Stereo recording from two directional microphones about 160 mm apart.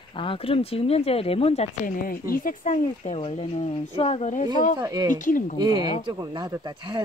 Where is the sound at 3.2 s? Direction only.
40° left (ahead or behind).